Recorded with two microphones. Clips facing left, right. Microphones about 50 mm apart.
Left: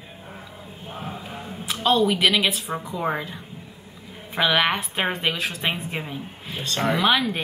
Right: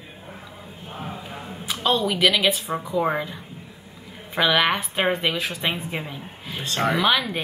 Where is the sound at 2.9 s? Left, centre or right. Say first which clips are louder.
Right 4 dB; centre.